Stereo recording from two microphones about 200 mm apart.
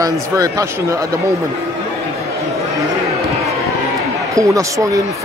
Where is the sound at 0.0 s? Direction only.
15° right (ahead or behind).